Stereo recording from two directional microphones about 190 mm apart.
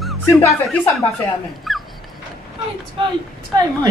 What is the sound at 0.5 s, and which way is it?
Speech, centre (ahead or behind).